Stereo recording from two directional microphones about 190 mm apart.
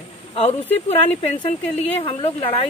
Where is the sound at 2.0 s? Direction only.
30° left (ahead or behind).